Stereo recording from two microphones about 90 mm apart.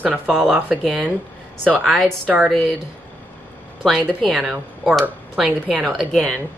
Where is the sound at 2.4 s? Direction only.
Centre (ahead or behind).